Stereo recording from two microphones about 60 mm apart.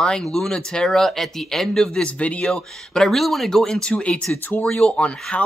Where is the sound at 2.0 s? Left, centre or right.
Left.